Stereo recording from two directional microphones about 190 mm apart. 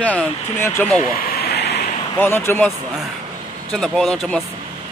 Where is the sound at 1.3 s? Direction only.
55° left (ahead or behind).